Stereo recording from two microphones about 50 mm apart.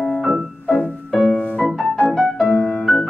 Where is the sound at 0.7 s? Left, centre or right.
Centre.